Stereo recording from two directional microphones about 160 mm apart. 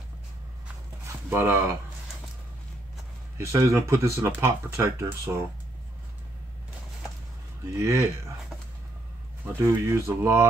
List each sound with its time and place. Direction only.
1.0 s speech: 15° right (ahead or behind)
3.3 s speech: 15° right (ahead or behind)
7.7 s speech: 15° right (ahead or behind)
9.6 s speech: 15° right (ahead or behind)